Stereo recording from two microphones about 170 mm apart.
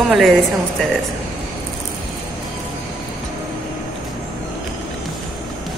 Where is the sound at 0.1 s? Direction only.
Centre (ahead or behind).